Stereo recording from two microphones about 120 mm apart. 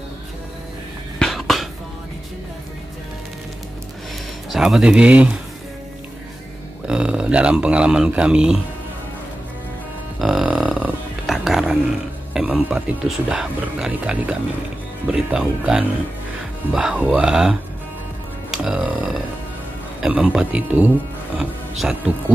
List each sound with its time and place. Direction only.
1.2 s a sound: centre (ahead or behind)
4.5 s speech: 5° right (ahead or behind)
6.9 s speech: 10° right (ahead or behind)
10.1 s a sound: centre (ahead or behind)
11.2 s music: centre (ahead or behind)
12.4 s speech: 5° right (ahead or behind)
18.5 s music: 5° right (ahead or behind)
20.0 s speech: 5° right (ahead or behind)
21.4 s music: 5° right (ahead or behind)